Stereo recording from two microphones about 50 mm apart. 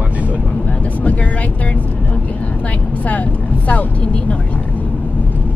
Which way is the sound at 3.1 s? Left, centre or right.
Left.